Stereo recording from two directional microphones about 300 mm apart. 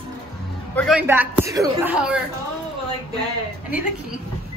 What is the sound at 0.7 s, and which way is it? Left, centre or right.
A woman's voice, centre.